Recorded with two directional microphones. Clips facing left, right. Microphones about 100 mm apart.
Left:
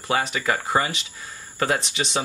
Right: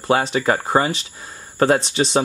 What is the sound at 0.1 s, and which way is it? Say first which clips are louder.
Speech: right 6 dB; 30° right (ahead or behind).